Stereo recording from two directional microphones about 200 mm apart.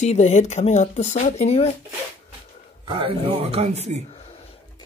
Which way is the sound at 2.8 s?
25° right (ahead or behind).